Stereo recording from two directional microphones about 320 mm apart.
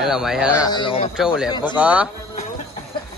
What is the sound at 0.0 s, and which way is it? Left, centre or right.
Speech, centre.